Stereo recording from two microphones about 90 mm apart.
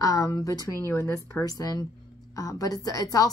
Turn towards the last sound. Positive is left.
turn(degrees=40)  # may be behind; listen again after turning